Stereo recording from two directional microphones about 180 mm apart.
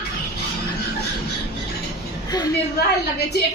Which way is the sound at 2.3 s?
20° left (ahead or behind).